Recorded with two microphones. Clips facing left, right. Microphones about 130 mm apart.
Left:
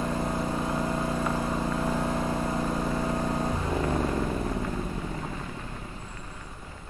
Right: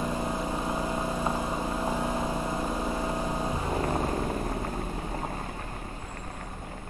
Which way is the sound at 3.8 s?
35° right (ahead or behind).